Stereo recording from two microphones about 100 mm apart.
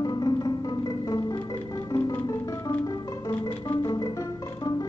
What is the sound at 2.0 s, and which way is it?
Music, 25° left (ahead or behind).